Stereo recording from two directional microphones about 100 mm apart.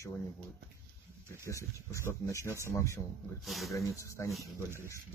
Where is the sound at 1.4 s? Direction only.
30° left (ahead or behind).